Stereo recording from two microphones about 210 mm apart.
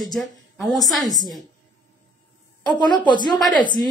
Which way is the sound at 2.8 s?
20° left (ahead or behind).